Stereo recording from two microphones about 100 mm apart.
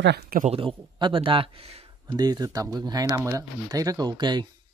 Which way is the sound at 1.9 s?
45° right (ahead or behind).